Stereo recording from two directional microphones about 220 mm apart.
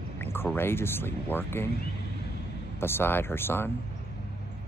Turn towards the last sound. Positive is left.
turn(degrees=10)  # may be behind; listen again after turning